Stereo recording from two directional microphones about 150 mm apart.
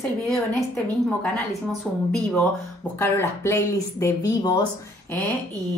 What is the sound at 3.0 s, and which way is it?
Speech, 20° left (ahead or behind).